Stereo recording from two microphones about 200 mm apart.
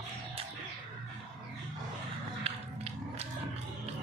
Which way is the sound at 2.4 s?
30° right (ahead or behind).